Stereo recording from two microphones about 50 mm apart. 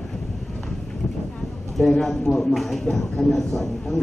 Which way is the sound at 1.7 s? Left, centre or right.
Centre.